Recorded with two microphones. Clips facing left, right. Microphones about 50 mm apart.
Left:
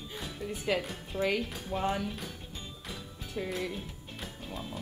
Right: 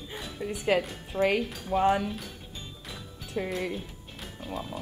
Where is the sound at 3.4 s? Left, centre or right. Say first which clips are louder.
Right 4 dB; right.